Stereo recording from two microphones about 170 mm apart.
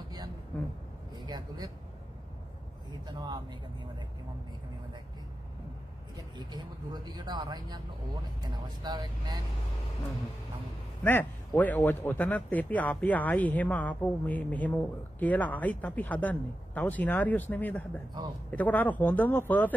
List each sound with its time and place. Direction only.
1.2 s speech: 25° right (ahead or behind)
2.9 s speech: 25° right (ahead or behind)
6.1 s speech: 25° right (ahead or behind)
11.1 s speech: 10° left (ahead or behind)